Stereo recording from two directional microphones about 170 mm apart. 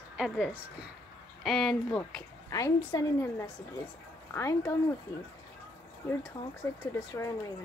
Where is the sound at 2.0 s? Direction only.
20° left (ahead or behind).